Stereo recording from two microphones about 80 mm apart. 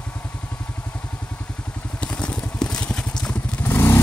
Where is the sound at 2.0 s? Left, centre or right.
Centre.